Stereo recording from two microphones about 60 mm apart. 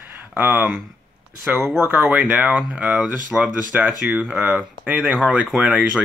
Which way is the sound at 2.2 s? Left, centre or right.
Right.